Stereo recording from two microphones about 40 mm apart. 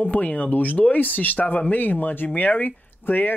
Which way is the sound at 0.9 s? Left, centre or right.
Left.